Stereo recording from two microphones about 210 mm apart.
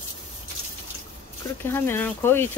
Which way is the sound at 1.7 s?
10° left (ahead or behind).